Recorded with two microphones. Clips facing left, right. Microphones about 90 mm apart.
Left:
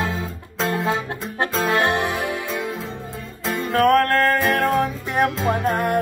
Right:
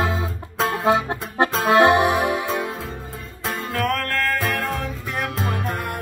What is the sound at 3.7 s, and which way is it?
Music, 45° left (ahead or behind).